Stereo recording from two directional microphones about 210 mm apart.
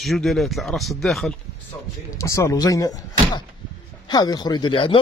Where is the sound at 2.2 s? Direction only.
15° left (ahead or behind).